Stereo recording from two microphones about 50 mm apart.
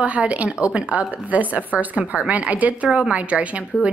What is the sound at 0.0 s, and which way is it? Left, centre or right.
Speech, right.